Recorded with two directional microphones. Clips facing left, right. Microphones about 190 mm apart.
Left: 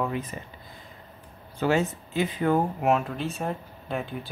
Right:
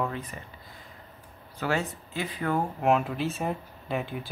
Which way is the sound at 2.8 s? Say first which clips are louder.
Even; centre (ahead or behind).